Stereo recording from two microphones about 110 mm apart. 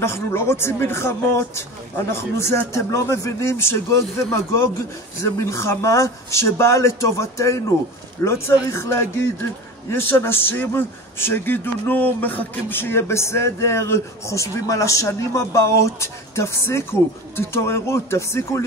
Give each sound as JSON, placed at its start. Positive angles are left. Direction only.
{"t": 0.0, "sound": "a man's voice", "side_deg": 25}